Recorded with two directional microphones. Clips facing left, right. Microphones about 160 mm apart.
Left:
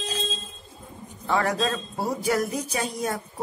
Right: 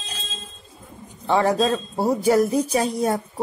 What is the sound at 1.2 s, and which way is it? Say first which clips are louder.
A man's voice: right 5 dB; 30° right (ahead or behind).